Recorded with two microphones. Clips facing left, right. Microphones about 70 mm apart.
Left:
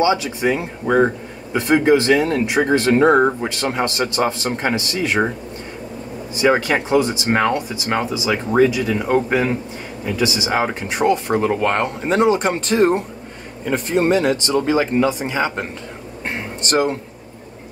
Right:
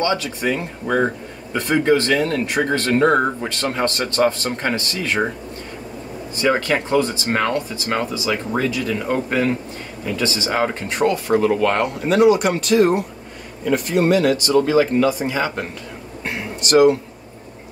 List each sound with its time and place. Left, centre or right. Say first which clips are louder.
0.0 s speech: left 3 dB; centre
6.3 s speech: left 2 dB; centre
16.3 s a sound: right 1 dB; left